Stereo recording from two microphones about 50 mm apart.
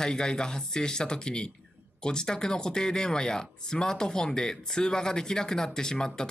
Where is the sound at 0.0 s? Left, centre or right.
Centre.